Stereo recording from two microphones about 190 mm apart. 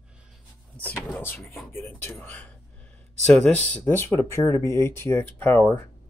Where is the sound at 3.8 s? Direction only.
15° left (ahead or behind).